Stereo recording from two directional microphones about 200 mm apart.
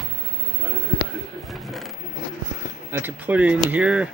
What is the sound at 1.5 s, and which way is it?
Speech, centre (ahead or behind).